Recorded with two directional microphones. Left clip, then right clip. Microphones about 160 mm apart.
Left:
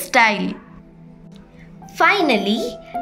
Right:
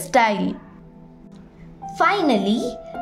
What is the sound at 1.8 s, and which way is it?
Speech, 25° right (ahead or behind).